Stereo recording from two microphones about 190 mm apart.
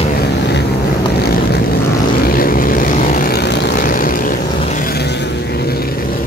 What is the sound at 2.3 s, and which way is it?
Vehicle, 50° left (ahead or behind).